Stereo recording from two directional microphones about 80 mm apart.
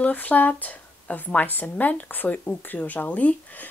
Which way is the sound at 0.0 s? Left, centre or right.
Centre.